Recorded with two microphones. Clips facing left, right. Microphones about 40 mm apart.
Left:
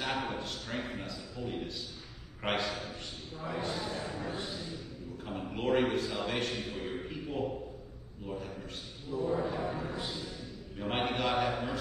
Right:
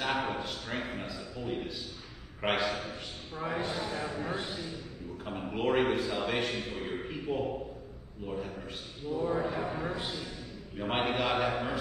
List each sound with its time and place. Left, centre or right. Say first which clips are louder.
0.0 s a man's voice: right 3 dB; centre
3.3 s a man's voice: right 3 dB; right
5.2 s a man's voice: right 3 dB; centre
6.6 s a man's voice: right 1 dB; right
6.9 s a man's voice: right 3 dB; centre
9.4 s a man's voice: right 1 dB; right
9.9 s a man's voice: right 1 dB; right
10.8 s a man's voice: right 2 dB; centre